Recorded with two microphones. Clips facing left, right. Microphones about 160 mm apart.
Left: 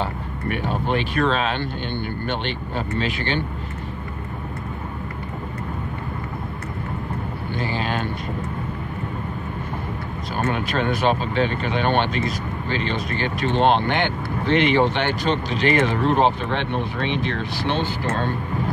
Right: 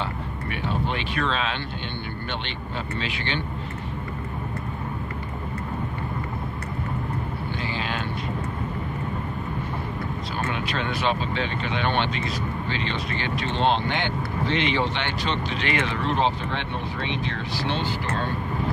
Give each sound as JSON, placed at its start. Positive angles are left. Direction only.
{"t": 0.0, "sound": "speech", "side_deg": 45}
{"t": 3.0, "sound": "speech", "side_deg": 45}
{"t": 7.7, "sound": "a sound", "side_deg": 45}
{"t": 10.5, "sound": "speech", "side_deg": 45}